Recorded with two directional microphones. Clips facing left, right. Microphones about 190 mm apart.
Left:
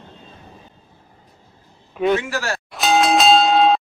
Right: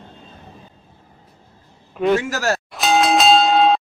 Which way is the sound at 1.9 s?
Centre (ahead or behind).